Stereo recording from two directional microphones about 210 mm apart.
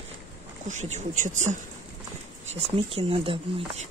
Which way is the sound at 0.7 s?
35° right (ahead or behind).